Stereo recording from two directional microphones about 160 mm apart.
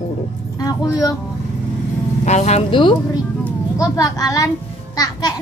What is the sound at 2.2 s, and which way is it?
Speech, 45° left (ahead or behind).